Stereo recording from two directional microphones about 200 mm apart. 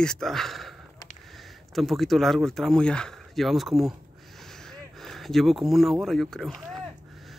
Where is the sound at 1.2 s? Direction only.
Centre (ahead or behind).